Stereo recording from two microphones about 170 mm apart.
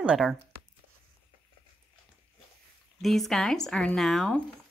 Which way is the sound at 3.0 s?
Centre (ahead or behind).